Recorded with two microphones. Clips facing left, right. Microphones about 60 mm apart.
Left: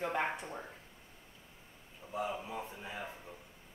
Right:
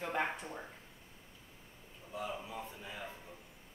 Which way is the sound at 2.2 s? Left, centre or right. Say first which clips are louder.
Left 4 dB; left.